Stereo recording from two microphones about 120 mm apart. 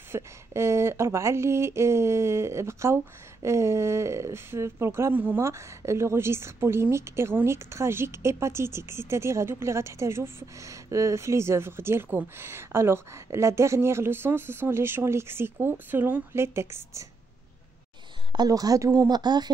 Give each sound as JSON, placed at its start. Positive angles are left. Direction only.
{"t": 0.1, "sound": "speech", "side_deg": -20}
{"t": 18.3, "sound": "speech", "side_deg": -35}